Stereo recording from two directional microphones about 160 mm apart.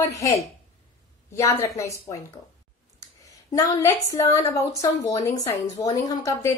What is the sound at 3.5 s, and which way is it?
A woman's voice, 20° left (ahead or behind).